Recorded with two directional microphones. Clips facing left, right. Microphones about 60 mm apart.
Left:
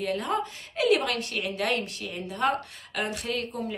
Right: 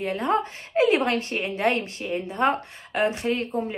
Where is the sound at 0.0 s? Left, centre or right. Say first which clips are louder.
Right 4 dB; right.